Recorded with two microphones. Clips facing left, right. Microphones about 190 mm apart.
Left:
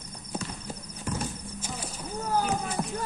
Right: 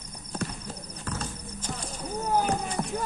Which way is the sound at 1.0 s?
15° left (ahead or behind).